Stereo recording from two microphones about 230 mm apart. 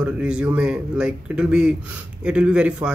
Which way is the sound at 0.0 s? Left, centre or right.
Centre.